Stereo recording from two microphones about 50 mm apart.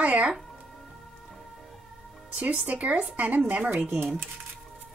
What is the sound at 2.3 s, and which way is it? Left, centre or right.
Speech, right.